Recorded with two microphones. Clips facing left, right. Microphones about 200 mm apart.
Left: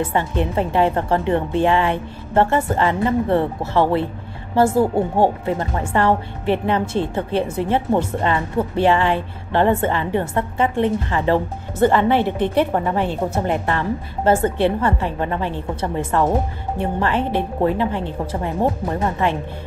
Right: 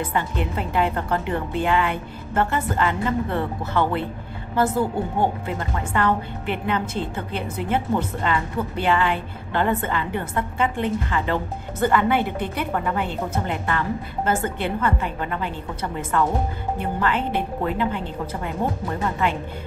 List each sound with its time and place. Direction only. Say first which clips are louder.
0.0 s a woman's voice: left 5 dB; 25° left (ahead or behind)